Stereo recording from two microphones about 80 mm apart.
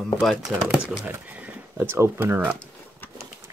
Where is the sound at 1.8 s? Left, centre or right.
Right.